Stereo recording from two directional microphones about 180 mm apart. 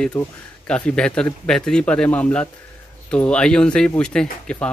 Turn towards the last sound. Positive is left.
turn(degrees=5)  # may be behind; listen again after turning